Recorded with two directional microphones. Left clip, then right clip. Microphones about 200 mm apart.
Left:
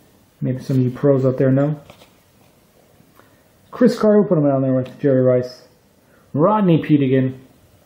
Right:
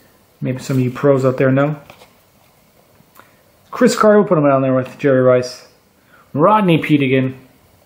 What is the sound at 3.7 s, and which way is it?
Speech, 5° left (ahead or behind).